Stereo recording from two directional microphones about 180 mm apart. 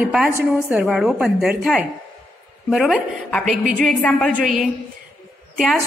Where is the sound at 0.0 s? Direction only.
5° right (ahead or behind).